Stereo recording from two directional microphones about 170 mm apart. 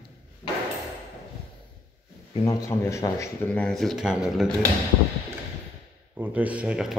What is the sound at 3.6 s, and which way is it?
Speech, centre (ahead or behind).